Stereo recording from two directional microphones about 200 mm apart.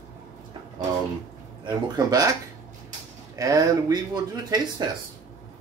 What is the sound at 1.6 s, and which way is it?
Speech, 20° right (ahead or behind).